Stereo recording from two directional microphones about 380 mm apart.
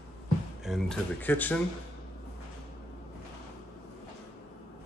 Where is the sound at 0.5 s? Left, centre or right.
Centre.